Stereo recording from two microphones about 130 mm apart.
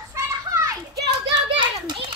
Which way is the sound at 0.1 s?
25° right (ahead or behind).